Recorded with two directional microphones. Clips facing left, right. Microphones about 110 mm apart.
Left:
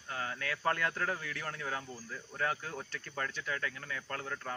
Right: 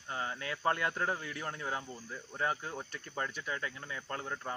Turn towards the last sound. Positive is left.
turn(degrees=-20)  # may be behind; listen again after turning